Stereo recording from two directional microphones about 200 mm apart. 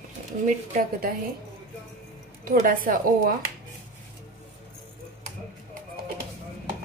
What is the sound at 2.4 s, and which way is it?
Speech, 45° right (ahead or behind).